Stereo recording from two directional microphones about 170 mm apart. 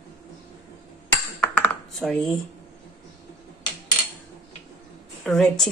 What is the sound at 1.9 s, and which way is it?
Speech, 5° left (ahead or behind).